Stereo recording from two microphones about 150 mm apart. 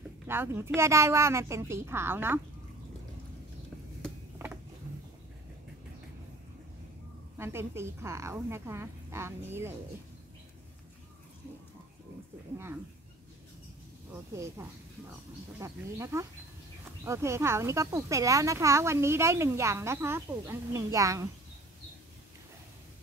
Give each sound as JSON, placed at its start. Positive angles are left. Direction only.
{"t": 0.3, "sound": "a woman's voice", "side_deg": -15}
{"t": 7.3, "sound": "a woman's voice", "side_deg": -15}
{"t": 14.3, "sound": "speech", "side_deg": -20}